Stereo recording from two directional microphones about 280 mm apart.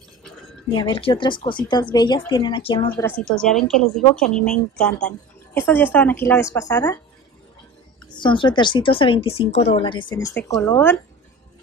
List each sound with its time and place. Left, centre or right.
0.7 s speech: centre
3.3 s speech: centre
8.2 s speech: centre